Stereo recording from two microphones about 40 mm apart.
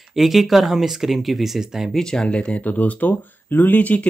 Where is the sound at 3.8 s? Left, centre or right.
Left.